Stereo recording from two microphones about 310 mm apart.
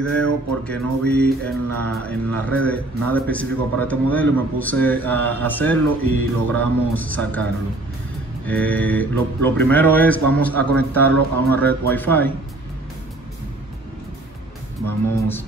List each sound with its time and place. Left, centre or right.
0.0 s speech: centre
8.5 s speech: centre
14.9 s speech: centre